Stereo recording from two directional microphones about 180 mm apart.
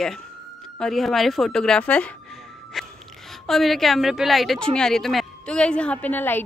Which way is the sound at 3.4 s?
Centre (ahead or behind).